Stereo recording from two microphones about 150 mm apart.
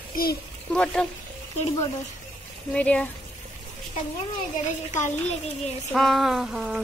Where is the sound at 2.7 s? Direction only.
10° left (ahead or behind).